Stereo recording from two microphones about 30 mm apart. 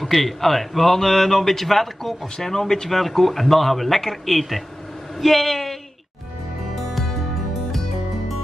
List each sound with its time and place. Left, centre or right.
0.0 s a man's voice: centre